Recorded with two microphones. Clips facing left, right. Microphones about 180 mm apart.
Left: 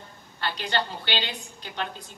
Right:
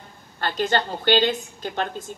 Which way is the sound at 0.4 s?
45° right (ahead or behind).